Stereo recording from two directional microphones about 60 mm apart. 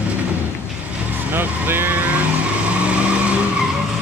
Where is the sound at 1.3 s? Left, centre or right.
Right.